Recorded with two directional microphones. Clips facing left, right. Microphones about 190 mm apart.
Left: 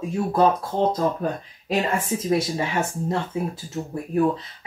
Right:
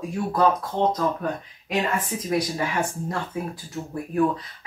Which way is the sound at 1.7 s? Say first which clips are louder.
Left 2 dB; 25° left (ahead or behind).